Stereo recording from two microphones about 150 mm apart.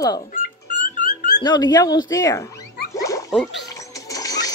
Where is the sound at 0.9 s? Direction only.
60° left (ahead or behind).